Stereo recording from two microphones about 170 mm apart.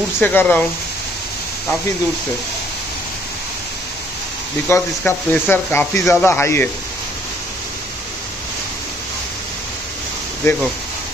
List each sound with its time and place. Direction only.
0.2 s speech: 10° left (ahead or behind)
4.6 s speech: 15° left (ahead or behind)
10.4 s speech: 15° left (ahead or behind)